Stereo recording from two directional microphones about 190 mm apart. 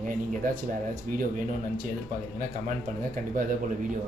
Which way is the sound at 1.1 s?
45° right (ahead or behind).